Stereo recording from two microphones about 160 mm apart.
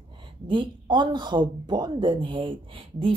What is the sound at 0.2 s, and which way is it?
Speech, 30° right (ahead or behind).